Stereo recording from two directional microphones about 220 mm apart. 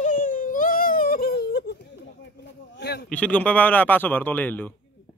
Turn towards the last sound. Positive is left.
turn(degrees=10)  # may be behind; listen again after turning